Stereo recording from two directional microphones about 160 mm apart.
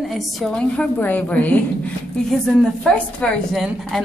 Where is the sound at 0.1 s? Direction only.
Centre (ahead or behind).